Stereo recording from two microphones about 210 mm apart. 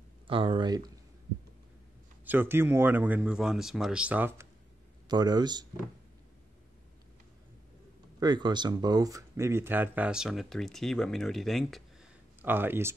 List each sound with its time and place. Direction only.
0.3 s speech: 25° right (ahead or behind)
2.2 s speech: 10° right (ahead or behind)
8.2 s speech: 20° right (ahead or behind); by 12.1 s centre (ahead or behind)
12.4 s speech: 10° right (ahead or behind)